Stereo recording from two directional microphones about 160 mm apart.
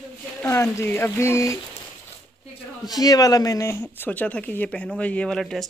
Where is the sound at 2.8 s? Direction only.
25° left (ahead or behind).